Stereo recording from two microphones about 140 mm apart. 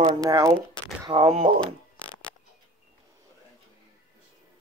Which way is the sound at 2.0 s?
10° left (ahead or behind).